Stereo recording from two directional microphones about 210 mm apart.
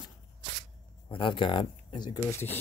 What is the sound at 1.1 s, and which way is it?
Speech, 25° left (ahead or behind).